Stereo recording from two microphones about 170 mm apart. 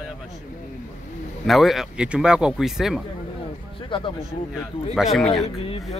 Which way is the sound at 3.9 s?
30° left (ahead or behind).